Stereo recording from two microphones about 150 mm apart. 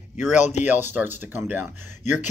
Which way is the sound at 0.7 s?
10° right (ahead or behind).